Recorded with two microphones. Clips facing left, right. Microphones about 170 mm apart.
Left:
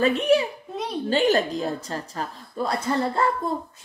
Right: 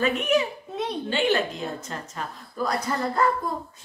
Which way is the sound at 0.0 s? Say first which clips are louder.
Left 3 dB; 35° left (ahead or behind).